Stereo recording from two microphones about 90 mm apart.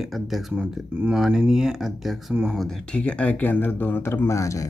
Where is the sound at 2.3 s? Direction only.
15° right (ahead or behind).